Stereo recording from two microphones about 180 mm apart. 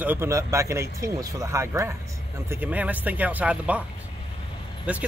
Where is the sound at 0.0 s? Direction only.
15° right (ahead or behind).